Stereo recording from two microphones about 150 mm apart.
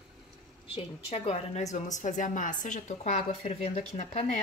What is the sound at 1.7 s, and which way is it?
A woman's voice, 55° left (ahead or behind).